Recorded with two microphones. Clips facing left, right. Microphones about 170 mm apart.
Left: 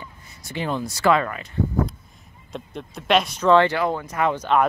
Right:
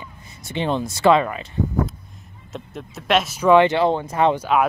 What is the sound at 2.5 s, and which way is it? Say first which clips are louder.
Speech: even; centre (ahead or behind).